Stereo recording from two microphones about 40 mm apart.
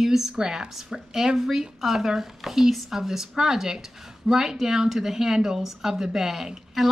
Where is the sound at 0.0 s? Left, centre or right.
Centre.